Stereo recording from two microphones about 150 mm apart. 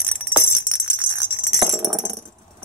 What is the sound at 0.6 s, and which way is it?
Music, 15° right (ahead or behind).